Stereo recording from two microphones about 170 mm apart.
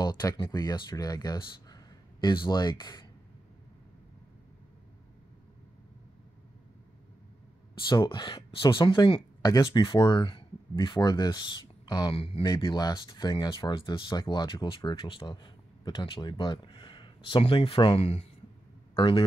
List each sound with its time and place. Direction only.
0.0 s speech: 25° left (ahead or behind)
7.9 s speech: 25° left (ahead or behind)